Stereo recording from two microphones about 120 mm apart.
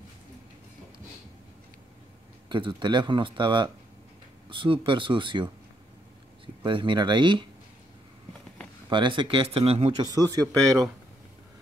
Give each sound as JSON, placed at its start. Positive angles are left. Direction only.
{"t": 2.5, "sound": "speech", "side_deg": -40}
{"t": 8.8, "sound": "speech", "side_deg": -40}
{"t": 9.9, "sound": "speech", "side_deg": -30}